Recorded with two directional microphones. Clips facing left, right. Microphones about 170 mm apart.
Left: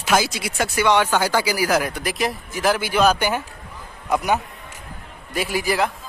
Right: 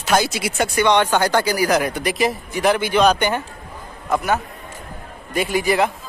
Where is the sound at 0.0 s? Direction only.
5° left (ahead or behind).